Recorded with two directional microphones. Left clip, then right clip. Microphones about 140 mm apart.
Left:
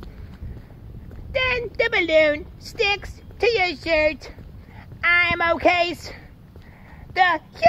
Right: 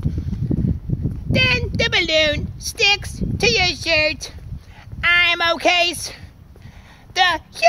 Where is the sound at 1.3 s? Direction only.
25° right (ahead or behind).